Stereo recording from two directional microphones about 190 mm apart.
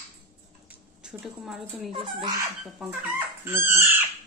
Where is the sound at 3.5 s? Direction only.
10° right (ahead or behind).